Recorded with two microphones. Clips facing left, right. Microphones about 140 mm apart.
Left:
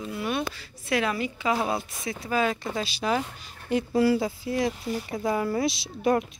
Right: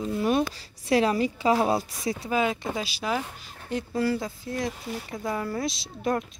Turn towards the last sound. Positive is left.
turn(degrees=5)  # may be behind; listen again after turning